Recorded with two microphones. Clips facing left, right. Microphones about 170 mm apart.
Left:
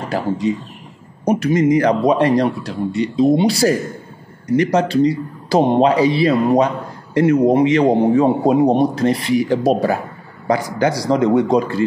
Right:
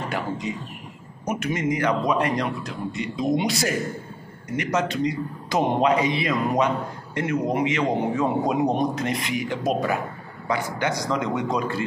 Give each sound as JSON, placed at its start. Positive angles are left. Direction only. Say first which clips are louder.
{"t": 0.1, "sound": "a man's voice", "louder": "left 14 dB", "side_deg": 35}